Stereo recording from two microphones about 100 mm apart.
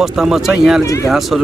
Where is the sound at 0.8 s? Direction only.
30° left (ahead or behind).